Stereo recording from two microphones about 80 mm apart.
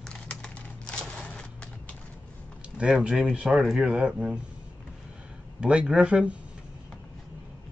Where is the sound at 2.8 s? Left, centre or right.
Centre.